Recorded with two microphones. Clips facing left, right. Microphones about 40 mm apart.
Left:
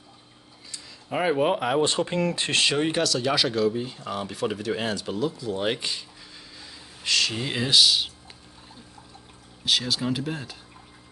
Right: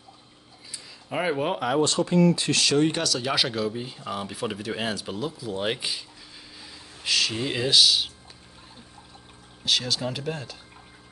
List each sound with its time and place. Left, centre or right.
0.7 s speech: centre
1.9 s speech: left
2.9 s speech: centre
9.7 s speech: centre